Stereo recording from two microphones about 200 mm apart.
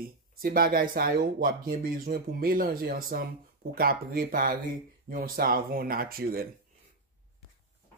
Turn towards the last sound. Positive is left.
turn(degrees=-50)  # may be behind; listen again after turning